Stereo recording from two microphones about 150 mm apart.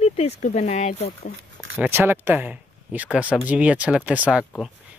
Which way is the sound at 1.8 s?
15° right (ahead or behind).